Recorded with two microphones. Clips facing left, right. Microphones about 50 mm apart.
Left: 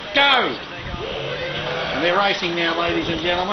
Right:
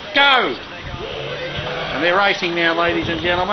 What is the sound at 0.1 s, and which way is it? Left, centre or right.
Speech, centre.